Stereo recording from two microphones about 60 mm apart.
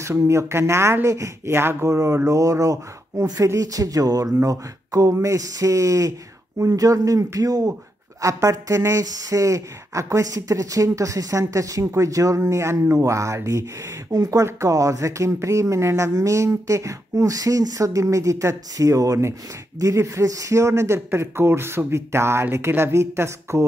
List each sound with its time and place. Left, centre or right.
0.0 s a man's voice: right
8.2 s speech: right
14.1 s speech: right
14.4 s speech: right
19.8 s a man's voice: right